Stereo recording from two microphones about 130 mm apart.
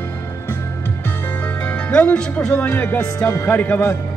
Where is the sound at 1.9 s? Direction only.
10° left (ahead or behind).